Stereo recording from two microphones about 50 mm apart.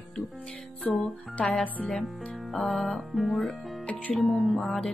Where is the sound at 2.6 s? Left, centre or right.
Centre.